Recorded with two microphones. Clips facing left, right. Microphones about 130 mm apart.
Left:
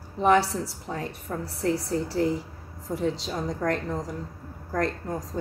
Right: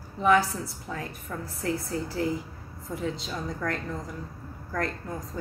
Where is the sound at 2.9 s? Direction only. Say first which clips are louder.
Left 4 dB; 40° left (ahead or behind).